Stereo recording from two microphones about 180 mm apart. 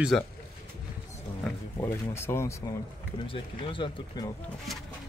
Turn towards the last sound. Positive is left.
turn(degrees=25)  # may be behind; listen again after turning